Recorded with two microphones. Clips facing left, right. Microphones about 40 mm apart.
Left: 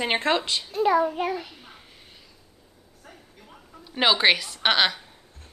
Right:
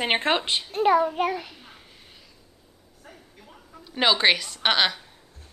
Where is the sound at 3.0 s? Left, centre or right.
Centre.